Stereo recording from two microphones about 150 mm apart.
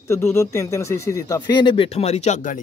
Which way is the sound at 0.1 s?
15° left (ahead or behind).